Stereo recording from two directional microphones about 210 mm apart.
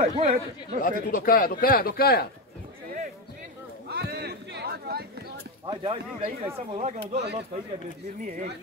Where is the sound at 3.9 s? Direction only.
50° right (ahead or behind).